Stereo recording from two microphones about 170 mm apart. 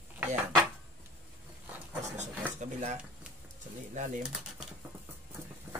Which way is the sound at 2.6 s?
45° right (ahead or behind).